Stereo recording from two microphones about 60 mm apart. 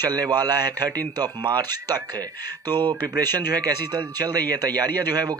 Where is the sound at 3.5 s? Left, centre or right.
Right.